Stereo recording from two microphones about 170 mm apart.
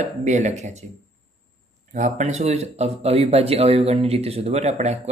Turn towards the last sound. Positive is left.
turn(degrees=-40)  # may be behind; listen again after turning